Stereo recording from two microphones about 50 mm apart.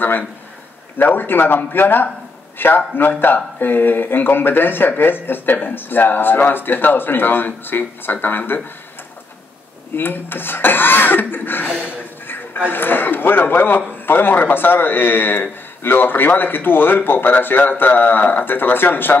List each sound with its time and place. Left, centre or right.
0.9 s speech: left
9.9 s speech: left